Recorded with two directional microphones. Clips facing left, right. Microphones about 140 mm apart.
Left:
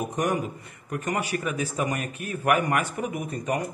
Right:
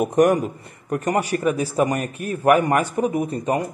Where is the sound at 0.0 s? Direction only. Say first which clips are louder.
Right 10 dB; 55° right (ahead or behind).